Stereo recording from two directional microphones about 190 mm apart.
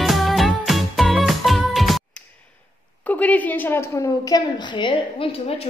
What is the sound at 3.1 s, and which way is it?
A woman's voice, 10° left (ahead or behind).